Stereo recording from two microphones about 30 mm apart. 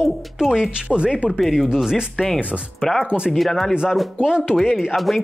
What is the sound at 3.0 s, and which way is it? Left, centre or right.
Speech, right.